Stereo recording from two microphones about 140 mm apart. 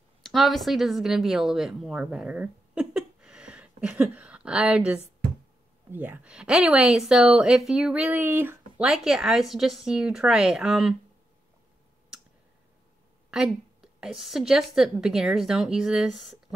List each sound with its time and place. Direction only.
0.2 s speech: centre (ahead or behind)
8.8 s a woman's voice: 5° right (ahead or behind)
13.3 s a woman's voice: 5° right (ahead or behind)